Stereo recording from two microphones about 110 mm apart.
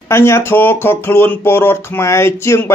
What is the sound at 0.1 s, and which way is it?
Speech, 25° left (ahead or behind).